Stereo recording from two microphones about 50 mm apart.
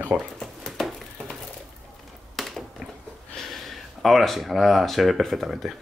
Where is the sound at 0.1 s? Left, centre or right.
Centre.